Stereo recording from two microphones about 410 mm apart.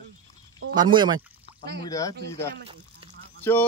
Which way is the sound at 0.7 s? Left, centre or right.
Centre.